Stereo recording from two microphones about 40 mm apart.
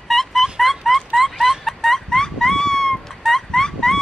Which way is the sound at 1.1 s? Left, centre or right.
Centre.